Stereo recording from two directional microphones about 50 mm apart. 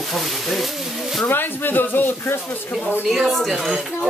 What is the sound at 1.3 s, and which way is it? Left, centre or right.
Speech, left.